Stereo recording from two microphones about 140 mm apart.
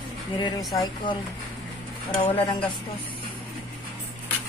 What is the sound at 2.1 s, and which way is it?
Speech, 30° left (ahead or behind).